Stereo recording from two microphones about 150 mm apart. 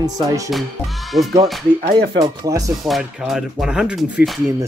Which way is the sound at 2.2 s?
25° right (ahead or behind).